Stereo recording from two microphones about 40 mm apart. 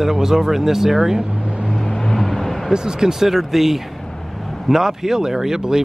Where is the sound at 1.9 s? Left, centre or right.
Centre.